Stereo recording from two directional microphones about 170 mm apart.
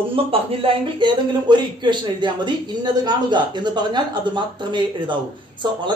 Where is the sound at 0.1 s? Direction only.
35° right (ahead or behind).